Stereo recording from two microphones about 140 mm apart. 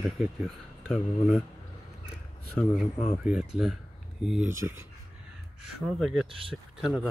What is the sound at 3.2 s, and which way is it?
Speech, 5° right (ahead or behind).